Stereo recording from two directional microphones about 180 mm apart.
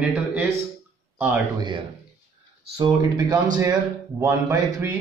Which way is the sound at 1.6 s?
25° right (ahead or behind).